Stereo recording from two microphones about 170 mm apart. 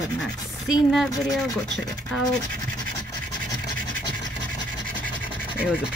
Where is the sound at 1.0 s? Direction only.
20° left (ahead or behind).